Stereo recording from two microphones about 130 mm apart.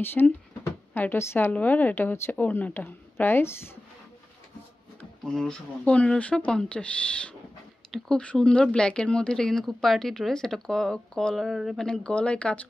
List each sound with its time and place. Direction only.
0.0 s speech: 15° left (ahead or behind)
5.2 s speech: 5° left (ahead or behind)